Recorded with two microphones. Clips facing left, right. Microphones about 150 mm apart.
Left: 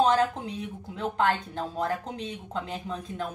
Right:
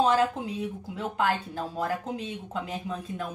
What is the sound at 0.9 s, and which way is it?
Speech, 5° right (ahead or behind).